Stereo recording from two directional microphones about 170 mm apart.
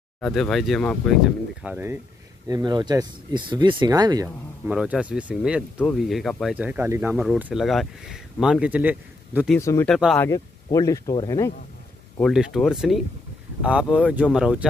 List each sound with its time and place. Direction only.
0.2 s speech: centre (ahead or behind)
2.4 s speech: 25° right (ahead or behind)
4.6 s speech: 5° right (ahead or behind)
9.6 s speech: 15° left (ahead or behind)
9.8 s speech: centre (ahead or behind)
10.1 s speech: 20° left (ahead or behind)
12.2 s speech: centre (ahead or behind)